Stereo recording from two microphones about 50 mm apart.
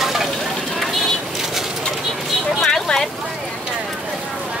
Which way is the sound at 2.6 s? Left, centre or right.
Centre.